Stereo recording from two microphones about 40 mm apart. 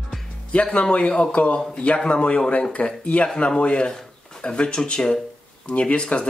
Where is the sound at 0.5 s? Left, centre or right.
Left.